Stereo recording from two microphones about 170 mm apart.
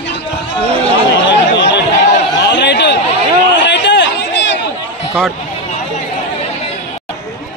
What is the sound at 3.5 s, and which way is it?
Chatter, 90° left.